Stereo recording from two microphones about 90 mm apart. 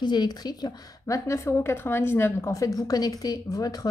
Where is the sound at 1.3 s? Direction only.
30° left (ahead or behind).